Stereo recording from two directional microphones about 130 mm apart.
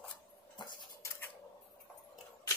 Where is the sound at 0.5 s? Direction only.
35° left (ahead or behind).